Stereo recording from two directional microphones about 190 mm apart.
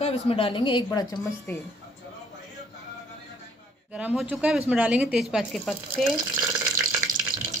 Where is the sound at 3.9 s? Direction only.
5° right (ahead or behind).